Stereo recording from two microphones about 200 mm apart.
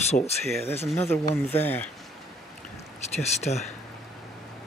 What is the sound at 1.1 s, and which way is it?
Speech, 10° left (ahead or behind).